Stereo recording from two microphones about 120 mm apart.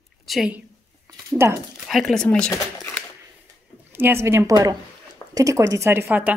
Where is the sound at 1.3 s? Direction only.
30° right (ahead or behind).